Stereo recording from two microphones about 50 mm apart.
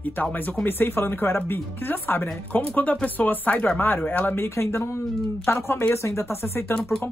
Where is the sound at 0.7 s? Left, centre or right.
Left.